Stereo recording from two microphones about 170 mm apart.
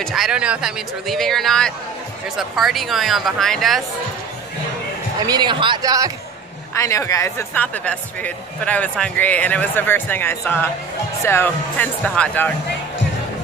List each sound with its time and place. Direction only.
0.0 s speech: centre (ahead or behind)
5.2 s speech: 25° right (ahead or behind)
6.7 s speech: 15° left (ahead or behind)